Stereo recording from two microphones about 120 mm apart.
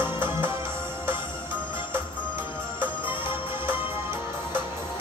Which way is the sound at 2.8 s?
20° right (ahead or behind).